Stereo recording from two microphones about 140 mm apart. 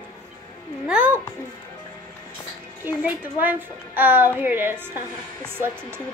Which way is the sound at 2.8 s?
15° right (ahead or behind).